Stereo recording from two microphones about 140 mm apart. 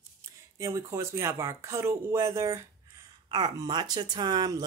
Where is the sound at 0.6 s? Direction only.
20° right (ahead or behind).